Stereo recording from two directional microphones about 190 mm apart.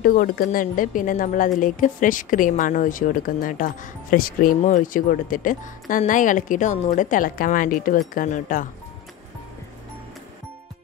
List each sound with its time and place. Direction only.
0.0 s a woman's voice: 50° left (ahead or behind)